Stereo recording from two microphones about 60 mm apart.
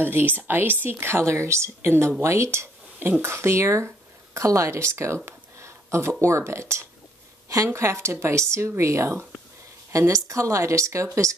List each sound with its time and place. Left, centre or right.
0.0 s speech: right
7.4 s speech: right
9.9 s a woman's voice: right